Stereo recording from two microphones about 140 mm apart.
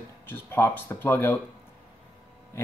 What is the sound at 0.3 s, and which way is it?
Speech, 15° left (ahead or behind).